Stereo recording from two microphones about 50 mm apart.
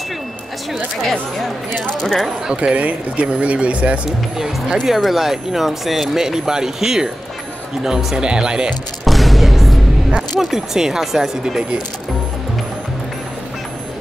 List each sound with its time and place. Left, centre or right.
1.4 s speech: centre
2.5 s speech: right
4.8 s speech: centre
9.0 s music: centre
10.4 s speech: centre